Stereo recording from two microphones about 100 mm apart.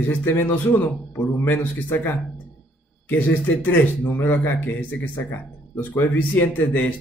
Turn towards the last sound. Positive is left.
turn(degrees=15)  # may be behind; listen again after turning